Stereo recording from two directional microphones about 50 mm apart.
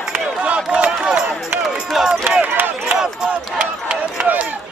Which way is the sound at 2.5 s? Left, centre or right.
Right.